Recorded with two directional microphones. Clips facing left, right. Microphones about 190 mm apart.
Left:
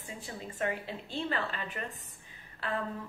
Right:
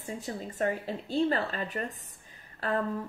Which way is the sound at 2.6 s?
40° right (ahead or behind).